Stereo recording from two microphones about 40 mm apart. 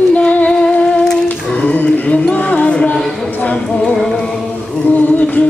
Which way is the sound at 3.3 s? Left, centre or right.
Left.